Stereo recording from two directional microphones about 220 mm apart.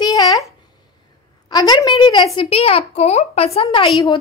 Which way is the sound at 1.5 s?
15° left (ahead or behind).